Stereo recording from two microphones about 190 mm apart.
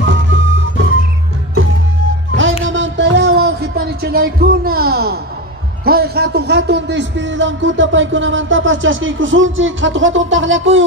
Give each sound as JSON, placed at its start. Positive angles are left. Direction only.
{"t": 0.1, "sound": "music", "side_deg": -85}
{"t": 2.6, "sound": "a sound", "side_deg": -80}
{"t": 5.9, "sound": "a man's voice", "side_deg": -55}